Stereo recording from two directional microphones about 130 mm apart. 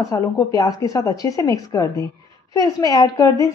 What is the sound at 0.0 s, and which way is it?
A woman's voice, 25° left (ahead or behind).